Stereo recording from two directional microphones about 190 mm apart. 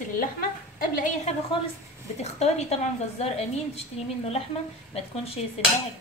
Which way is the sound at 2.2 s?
35° left (ahead or behind).